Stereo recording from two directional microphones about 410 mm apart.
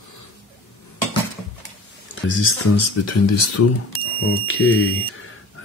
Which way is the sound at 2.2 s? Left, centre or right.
Left.